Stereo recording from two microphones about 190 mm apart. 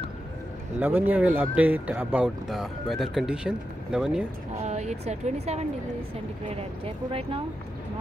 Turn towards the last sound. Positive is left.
turn(degrees=-30)  # may be behind; listen again after turning